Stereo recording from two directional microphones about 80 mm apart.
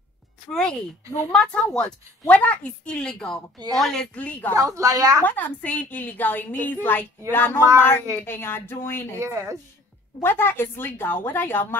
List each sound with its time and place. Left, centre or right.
0.5 s a woman's voice: centre
4.6 s a woman's voice: right
5.2 s a woman's voice: left
9.2 s speech: right
10.2 s a woman's voice: left